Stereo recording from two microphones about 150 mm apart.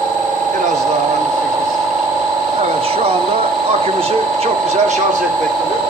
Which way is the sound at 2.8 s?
40° right (ahead or behind).